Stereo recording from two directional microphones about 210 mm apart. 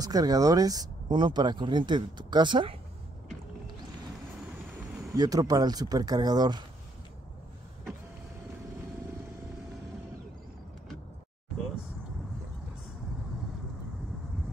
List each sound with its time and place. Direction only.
0.0 s speech: 20° right (ahead or behind)
5.1 s speech: 20° right (ahead or behind)